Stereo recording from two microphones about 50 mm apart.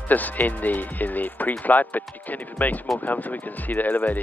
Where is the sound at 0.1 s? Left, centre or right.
Left.